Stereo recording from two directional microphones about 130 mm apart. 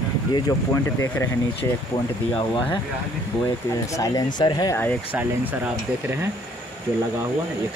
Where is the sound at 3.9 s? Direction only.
25° left (ahead or behind).